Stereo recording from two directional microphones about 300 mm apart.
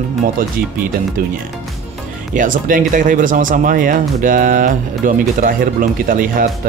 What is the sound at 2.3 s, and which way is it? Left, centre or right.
Speech, right.